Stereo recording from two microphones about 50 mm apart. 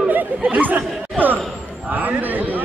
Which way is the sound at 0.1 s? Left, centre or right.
Right.